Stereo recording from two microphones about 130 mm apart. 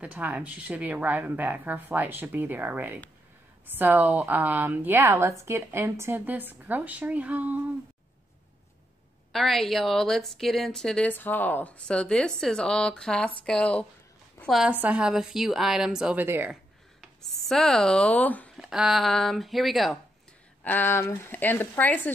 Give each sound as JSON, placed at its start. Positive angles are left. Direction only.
{"t": 0.0, "sound": "speech", "side_deg": -10}
{"t": 9.3, "sound": "a woman's voice", "side_deg": 0}
{"t": 14.5, "sound": "a woman's voice", "side_deg": -5}
{"t": 16.3, "sound": "speech", "side_deg": -15}
{"t": 17.2, "sound": "a woman's voice", "side_deg": 0}
{"t": 18.6, "sound": "a woman's voice", "side_deg": -5}
{"t": 20.6, "sound": "a woman's voice", "side_deg": 15}